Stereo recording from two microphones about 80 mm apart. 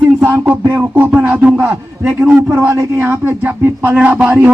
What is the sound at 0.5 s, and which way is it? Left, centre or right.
Speech, right.